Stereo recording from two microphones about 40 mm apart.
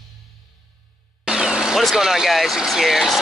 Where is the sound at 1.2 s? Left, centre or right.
Centre.